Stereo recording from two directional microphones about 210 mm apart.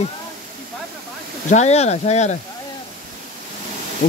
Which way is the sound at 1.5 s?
30° left (ahead or behind).